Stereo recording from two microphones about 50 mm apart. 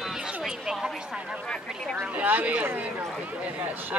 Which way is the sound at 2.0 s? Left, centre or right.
Right.